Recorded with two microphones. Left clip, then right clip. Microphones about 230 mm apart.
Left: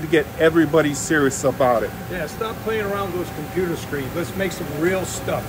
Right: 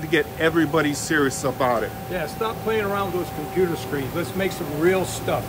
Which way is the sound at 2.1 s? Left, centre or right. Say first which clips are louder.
Right 2 dB; right.